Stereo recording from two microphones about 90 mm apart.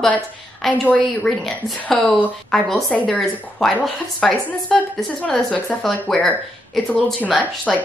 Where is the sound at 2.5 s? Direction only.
Centre (ahead or behind).